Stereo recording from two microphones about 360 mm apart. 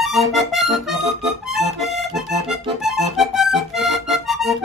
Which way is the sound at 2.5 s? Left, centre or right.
Centre.